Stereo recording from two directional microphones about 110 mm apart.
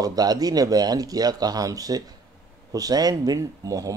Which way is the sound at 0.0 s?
35° right (ahead or behind).